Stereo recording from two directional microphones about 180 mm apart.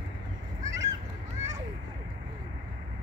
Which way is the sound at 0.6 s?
15° right (ahead or behind).